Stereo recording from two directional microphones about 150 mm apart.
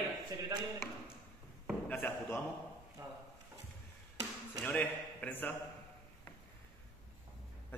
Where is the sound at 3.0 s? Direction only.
20° right (ahead or behind).